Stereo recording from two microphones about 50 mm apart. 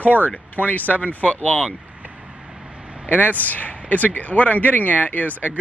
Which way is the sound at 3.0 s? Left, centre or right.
Left.